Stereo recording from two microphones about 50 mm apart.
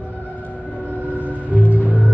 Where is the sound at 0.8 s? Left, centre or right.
Right.